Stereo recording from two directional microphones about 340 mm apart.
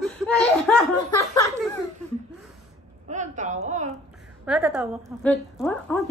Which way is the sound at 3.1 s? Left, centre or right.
Right.